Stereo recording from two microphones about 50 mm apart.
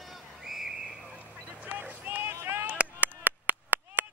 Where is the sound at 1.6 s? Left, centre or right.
Right.